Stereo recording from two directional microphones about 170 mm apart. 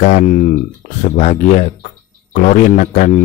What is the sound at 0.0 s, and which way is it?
A man's voice, 45° left (ahead or behind).